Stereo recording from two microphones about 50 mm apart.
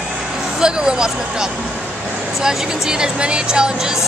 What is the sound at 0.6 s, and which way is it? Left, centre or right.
Speech, centre.